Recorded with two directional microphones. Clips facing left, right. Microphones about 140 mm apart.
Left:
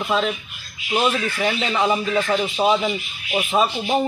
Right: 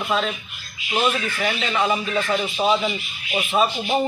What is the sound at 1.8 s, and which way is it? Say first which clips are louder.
Speech: left 2 dB; 15° left (ahead or behind).